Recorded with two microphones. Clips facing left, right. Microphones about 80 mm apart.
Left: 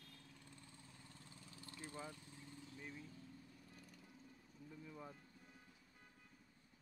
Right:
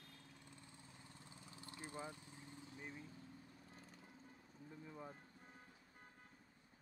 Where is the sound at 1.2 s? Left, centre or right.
Right.